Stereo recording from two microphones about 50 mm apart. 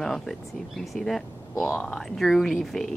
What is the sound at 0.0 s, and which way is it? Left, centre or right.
Speech, centre.